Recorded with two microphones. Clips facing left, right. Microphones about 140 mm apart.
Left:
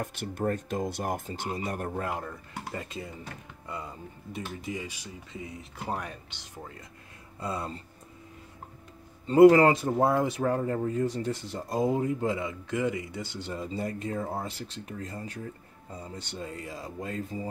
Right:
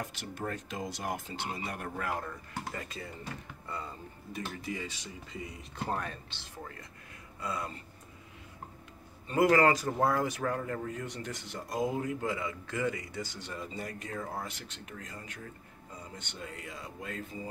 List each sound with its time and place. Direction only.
0.0 s speech: 55° left (ahead or behind)
2.7 s speech: 20° left (ahead or behind)
5.3 s speech: centre (ahead or behind)
7.3 s speech: 30° left (ahead or behind)
9.3 s speech: 25° left (ahead or behind)